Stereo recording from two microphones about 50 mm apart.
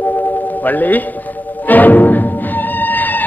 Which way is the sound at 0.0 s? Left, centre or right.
Left.